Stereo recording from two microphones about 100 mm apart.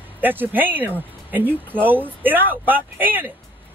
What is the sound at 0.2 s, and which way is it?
Speech, 20° right (ahead or behind).